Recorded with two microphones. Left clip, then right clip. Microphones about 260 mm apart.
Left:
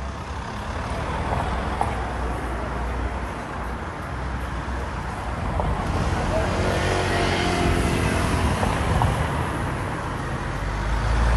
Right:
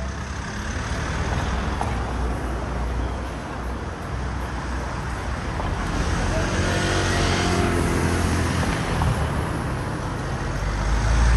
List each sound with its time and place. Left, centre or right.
6.6 s vehicle: left